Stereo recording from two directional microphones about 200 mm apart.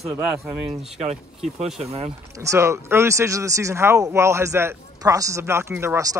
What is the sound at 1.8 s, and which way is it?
Speech, 30° right (ahead or behind).